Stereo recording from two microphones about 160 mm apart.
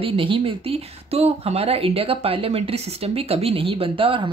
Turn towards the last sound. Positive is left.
turn(degrees=-35)  # may be behind; listen again after turning